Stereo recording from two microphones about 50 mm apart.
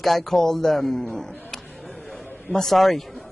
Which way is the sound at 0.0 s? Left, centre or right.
Centre.